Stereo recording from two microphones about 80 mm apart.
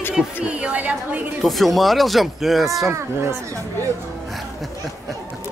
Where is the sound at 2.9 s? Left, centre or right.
Right.